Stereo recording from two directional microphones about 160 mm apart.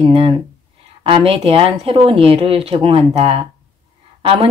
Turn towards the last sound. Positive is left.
turn(degrees=-35)  # may be behind; listen again after turning